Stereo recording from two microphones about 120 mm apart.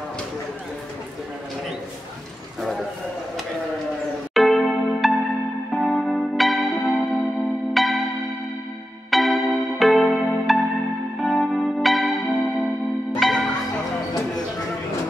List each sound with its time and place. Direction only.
4.3 s music: centre (ahead or behind)
9.1 s music: centre (ahead or behind)